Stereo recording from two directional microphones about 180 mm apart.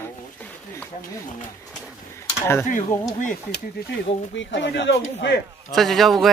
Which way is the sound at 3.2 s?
45° left (ahead or behind).